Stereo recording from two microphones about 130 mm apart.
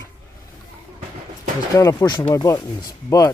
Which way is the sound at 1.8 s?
30° left (ahead or behind).